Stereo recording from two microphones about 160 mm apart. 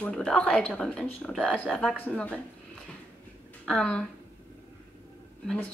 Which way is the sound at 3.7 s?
5° left (ahead or behind).